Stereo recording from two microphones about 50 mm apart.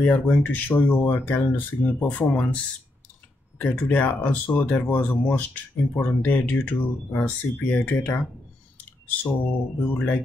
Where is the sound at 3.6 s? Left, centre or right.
Left.